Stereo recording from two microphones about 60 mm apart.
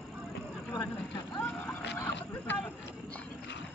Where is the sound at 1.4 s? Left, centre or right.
Left.